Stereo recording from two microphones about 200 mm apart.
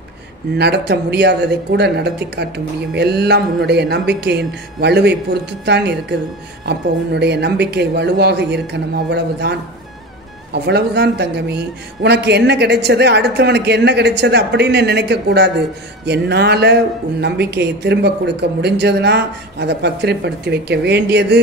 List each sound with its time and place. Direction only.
0.6 s speech: 55° right (ahead or behind)